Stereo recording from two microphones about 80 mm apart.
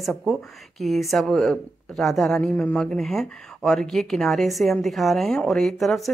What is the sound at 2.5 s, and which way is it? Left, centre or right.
Speech, centre.